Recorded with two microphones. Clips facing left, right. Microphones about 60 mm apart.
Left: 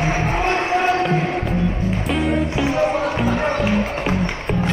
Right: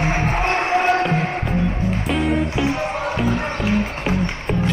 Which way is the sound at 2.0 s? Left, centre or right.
Centre.